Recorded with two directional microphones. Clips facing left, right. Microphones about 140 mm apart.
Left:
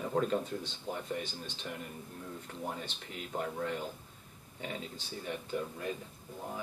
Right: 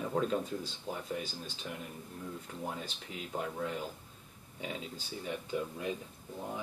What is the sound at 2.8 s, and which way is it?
Speech, 5° right (ahead or behind).